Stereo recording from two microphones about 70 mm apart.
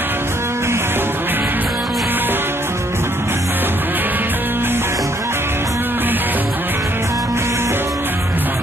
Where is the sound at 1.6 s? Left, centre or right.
Centre.